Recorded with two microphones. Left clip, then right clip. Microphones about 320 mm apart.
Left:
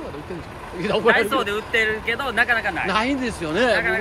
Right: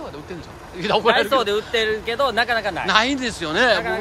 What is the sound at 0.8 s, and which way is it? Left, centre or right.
Speech, centre.